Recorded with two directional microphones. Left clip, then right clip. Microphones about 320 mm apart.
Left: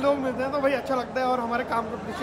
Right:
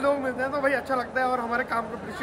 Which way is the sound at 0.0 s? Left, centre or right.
Centre.